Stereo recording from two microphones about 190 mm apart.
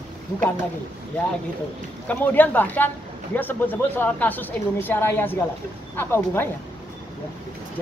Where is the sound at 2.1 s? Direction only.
10° left (ahead or behind).